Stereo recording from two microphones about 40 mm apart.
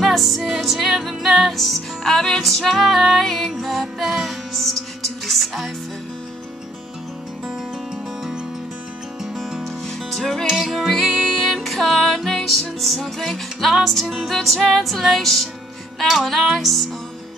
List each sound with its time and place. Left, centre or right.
0.0 s music: centre
2.7 s music: centre
9.2 s music: centre
10.4 s music: centre
10.7 s music: centre
11.1 s music: centre
11.3 s music: centre